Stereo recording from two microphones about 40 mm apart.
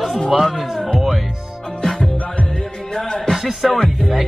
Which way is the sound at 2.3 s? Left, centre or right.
Left.